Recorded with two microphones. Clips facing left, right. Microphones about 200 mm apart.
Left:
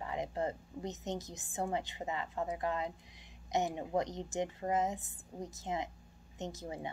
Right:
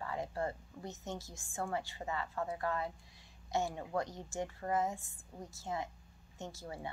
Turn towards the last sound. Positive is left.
turn(degrees=20)  # may be behind; listen again after turning